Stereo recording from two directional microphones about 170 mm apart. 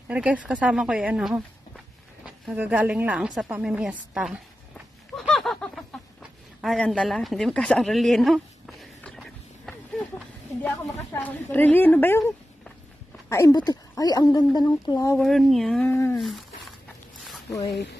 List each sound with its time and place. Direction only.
0.1 s a woman's voice: 5° right (ahead or behind)
2.5 s a woman's voice: 10° right (ahead or behind)
5.1 s a sound: centre (ahead or behind)
6.6 s a woman's voice: centre (ahead or behind)
9.7 s a sound: centre (ahead or behind)
11.1 s a woman's voice: 10° left (ahead or behind)
13.3 s a woman's voice: 20° left (ahead or behind)
15.1 s speech: centre (ahead or behind)
15.9 s a woman's voice: 15° left (ahead or behind)
16.2 s a sound: centre (ahead or behind)